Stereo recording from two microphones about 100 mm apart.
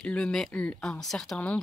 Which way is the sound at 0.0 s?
10° left (ahead or behind).